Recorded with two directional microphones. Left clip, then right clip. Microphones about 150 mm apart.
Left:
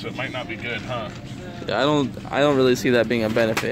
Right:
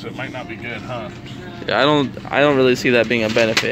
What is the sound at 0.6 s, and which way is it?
Speech, centre (ahead or behind).